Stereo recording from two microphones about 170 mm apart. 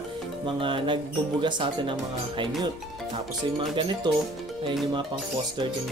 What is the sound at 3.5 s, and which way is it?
Speech, 30° right (ahead or behind).